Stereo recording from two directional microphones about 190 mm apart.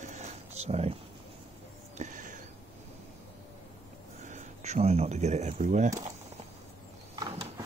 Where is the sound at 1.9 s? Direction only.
40° right (ahead or behind).